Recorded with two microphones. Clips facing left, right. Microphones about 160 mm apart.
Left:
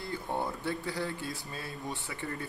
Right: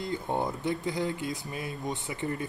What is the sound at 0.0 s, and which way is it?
Speech, 20° right (ahead or behind).